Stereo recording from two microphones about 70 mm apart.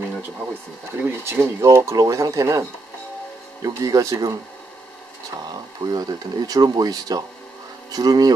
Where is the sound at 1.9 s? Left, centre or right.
Right.